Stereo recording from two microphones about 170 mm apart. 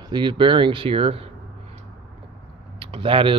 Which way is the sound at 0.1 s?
25° right (ahead or behind).